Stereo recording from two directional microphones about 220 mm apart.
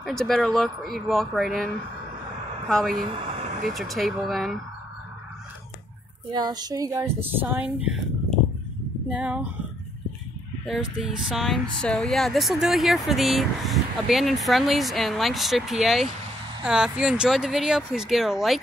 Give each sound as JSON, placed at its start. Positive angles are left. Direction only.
{"t": 0.0, "sound": "speech", "side_deg": 0}
{"t": 2.7, "sound": "speech", "side_deg": 0}
{"t": 3.1, "sound": "vehicle", "side_deg": -30}
{"t": 3.7, "sound": "speech", "side_deg": 0}
{"t": 6.3, "sound": "speech", "side_deg": -20}
{"t": 10.6, "sound": "speech", "side_deg": 0}